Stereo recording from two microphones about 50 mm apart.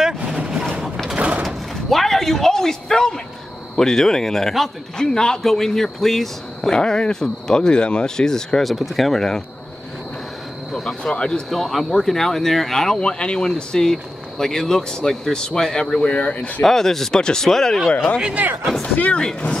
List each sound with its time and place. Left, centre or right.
0.4 s vehicle: centre
0.8 s a sound: centre
1.1 s a sound: right
1.4 s a sound: centre
3.7 s a man's voice: centre
6.8 s a man's voice: centre
8.6 s speech: centre
10.7 s speech: centre
11.5 s a man's voice: centre
13.0 s a man's voice: centre
16.6 s a man's voice: centre
18.8 s speech: left
19.1 s a man's voice: centre